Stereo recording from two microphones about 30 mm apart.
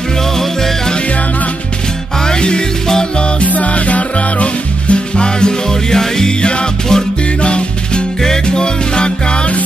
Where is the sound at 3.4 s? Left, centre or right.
Left; by 6.3 s centre.